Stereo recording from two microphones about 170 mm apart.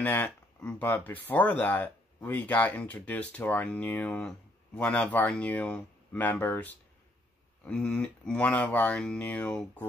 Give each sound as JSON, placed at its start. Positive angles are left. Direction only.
{"t": 0.0, "sound": "speech", "side_deg": 10}